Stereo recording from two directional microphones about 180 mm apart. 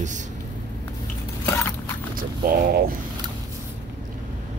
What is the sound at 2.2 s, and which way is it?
Speech, 55° right (ahead or behind).